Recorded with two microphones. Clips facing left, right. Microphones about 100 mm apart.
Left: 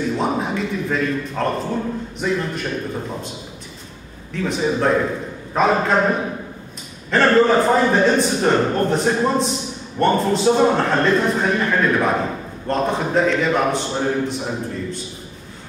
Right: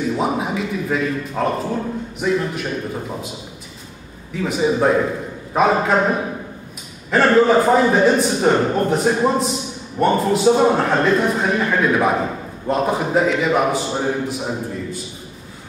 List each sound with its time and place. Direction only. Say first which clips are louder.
0.2 s a man's voice: even; 5° right (ahead or behind)
4.3 s a man's voice: right 2 dB; 5° right (ahead or behind)